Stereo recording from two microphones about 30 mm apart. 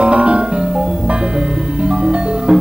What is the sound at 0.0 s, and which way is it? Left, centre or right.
Music, right.